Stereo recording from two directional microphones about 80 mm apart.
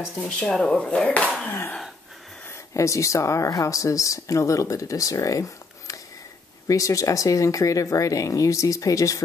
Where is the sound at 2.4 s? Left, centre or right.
Left.